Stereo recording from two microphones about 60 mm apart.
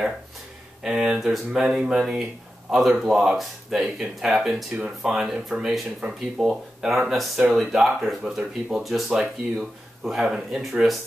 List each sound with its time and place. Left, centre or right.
0.8 s speech: centre
7.1 s speech: centre